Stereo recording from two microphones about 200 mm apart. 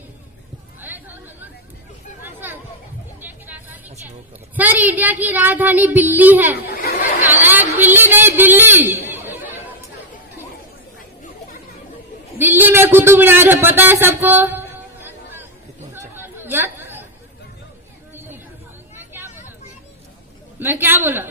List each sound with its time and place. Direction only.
0.7 s chatter: 10° right (ahead or behind)
3.2 s vehicle: 10° right (ahead or behind)
4.6 s child singing: 10° right (ahead or behind)
6.7 s chatter: 50° left (ahead or behind)
7.2 s a sound: 10° right (ahead or behind)
12.4 s a man's voice: 10° right (ahead or behind)
16.3 s chatter: 10° right (ahead or behind)
18.9 s vehicle: 10° right (ahead or behind)
20.5 s child singing: 10° right (ahead or behind)